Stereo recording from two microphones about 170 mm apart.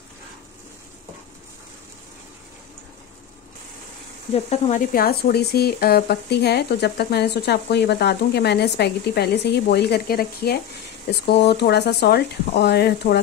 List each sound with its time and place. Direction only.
4.3 s speech: 40° left (ahead or behind); by 13.2 s 70° left (ahead or behind)